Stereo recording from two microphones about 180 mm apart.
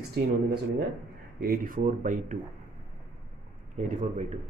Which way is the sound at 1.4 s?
55° right (ahead or behind).